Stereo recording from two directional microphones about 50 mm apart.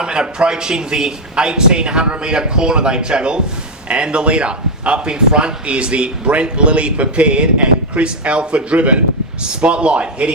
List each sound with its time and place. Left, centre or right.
0.0 s a man's voice: centre